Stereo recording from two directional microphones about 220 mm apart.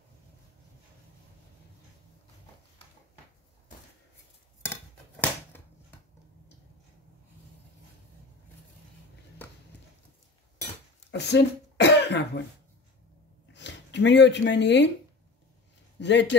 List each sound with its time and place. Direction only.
11.1 s cough: 50° left (ahead or behind)
13.5 s a sound: 50° left (ahead or behind)
16.0 s a man's voice: 55° left (ahead or behind)